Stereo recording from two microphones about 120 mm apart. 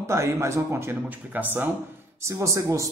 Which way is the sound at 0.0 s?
25° right (ahead or behind).